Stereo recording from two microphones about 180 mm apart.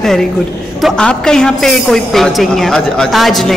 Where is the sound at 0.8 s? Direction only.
Centre (ahead or behind).